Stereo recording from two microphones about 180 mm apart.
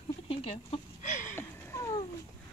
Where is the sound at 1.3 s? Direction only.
15° left (ahead or behind).